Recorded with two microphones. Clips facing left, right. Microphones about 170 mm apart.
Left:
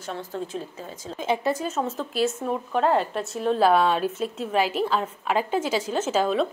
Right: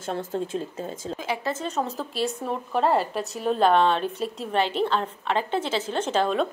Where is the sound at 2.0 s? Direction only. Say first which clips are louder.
Left 3 dB; centre (ahead or behind).